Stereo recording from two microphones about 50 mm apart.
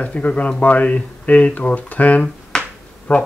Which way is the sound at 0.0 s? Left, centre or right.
Left.